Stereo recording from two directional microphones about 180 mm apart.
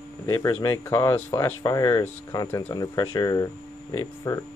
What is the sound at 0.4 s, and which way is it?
Speech, 20° left (ahead or behind).